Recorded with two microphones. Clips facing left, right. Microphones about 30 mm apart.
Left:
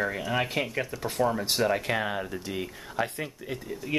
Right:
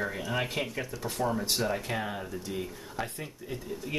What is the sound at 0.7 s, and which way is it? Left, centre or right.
Speech, left.